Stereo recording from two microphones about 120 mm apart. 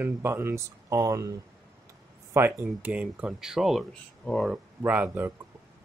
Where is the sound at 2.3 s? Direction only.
15° right (ahead or behind); by 4.5 s 10° left (ahead or behind).